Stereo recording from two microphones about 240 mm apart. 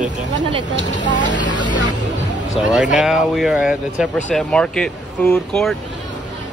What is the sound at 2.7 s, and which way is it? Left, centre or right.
Speech, centre.